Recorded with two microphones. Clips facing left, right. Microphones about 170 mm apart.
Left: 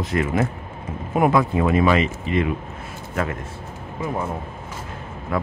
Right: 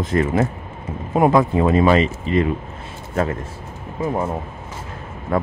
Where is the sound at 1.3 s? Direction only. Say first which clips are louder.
Right 3 dB; 35° right (ahead or behind).